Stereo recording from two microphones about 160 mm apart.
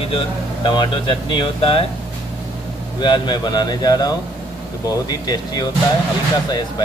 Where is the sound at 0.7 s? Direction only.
30° left (ahead or behind).